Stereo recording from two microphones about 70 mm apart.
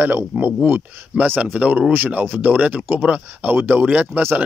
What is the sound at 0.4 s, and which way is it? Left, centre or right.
Speech, right.